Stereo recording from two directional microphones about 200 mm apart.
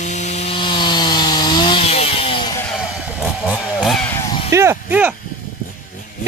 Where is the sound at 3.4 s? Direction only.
5° left (ahead or behind).